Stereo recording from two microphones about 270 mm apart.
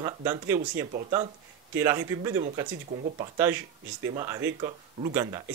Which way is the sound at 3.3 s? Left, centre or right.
Centre.